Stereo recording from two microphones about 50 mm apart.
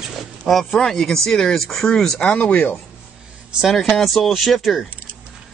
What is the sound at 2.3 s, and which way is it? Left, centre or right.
Speech, left.